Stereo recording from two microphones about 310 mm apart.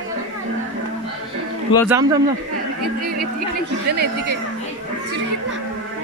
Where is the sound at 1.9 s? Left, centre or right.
Centre.